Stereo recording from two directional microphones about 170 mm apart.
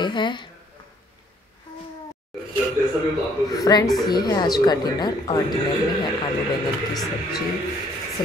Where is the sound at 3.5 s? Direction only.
20° left (ahead or behind).